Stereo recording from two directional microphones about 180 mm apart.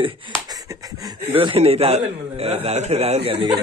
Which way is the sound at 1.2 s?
30° right (ahead or behind).